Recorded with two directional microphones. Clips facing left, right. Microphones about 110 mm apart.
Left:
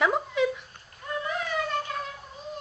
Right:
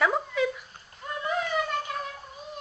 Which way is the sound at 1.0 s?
20° right (ahead or behind).